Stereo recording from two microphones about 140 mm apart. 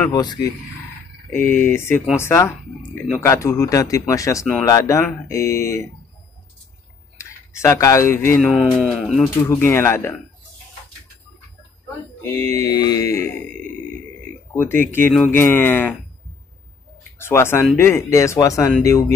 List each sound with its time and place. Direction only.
0.1 s speech: 30° left (ahead or behind)
1.3 s speech: 15° left (ahead or behind)
7.2 s speech: 20° left (ahead or behind); by 9.3 s centre (ahead or behind)
9.4 s speech: 15° left (ahead or behind)
12.2 s speech: 20° left (ahead or behind)
14.5 s speech: 15° left (ahead or behind)
17.2 s speech: 15° left (ahead or behind)